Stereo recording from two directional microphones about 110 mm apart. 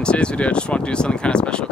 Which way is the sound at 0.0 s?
10° left (ahead or behind).